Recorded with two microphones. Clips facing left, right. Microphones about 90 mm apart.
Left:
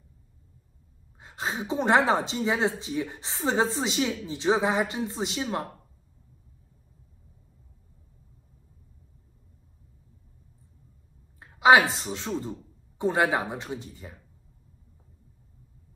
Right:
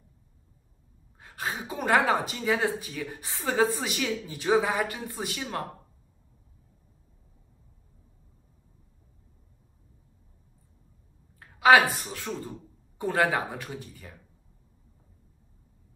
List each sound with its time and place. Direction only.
1.2 s a woman's voice: 20° left (ahead or behind)
11.3 s a sound: 20° left (ahead or behind)
11.9 s a woman's voice: 20° left (ahead or behind)